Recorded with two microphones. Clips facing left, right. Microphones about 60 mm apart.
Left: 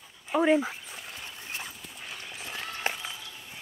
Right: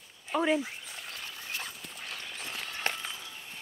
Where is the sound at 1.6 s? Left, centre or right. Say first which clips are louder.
Even; centre.